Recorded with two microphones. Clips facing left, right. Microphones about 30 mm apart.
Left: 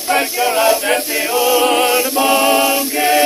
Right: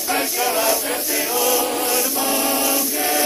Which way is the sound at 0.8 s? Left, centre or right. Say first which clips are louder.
Left 8 dB; left.